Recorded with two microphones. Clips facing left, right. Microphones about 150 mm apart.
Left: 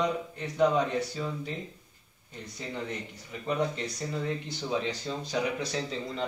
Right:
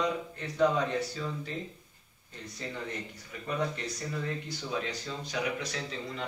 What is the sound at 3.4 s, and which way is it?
Speech, 20° left (ahead or behind).